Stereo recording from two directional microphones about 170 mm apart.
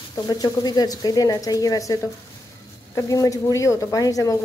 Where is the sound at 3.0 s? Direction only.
20° left (ahead or behind).